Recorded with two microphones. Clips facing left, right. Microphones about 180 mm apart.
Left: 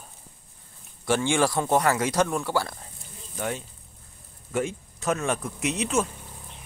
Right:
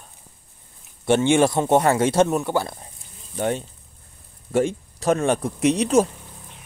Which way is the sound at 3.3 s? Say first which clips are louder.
Right 7 dB; 30° right (ahead or behind).